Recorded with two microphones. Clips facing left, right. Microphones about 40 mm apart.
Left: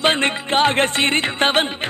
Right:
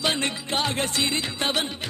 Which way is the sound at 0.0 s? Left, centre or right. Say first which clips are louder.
Left 8 dB; left.